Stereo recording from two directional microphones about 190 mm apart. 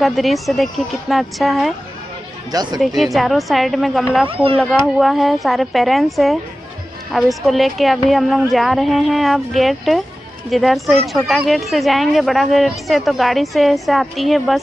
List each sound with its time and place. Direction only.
0.0 s speech: centre (ahead or behind)
2.5 s speech: 20° right (ahead or behind)
3.0 s speech: centre (ahead or behind)
4.3 s speech: 30° right (ahead or behind)
4.6 s speech: centre (ahead or behind)